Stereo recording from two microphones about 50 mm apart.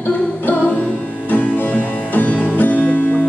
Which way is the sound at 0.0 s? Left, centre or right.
Left.